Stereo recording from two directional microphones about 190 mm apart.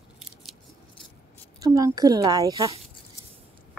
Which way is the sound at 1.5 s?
15° right (ahead or behind).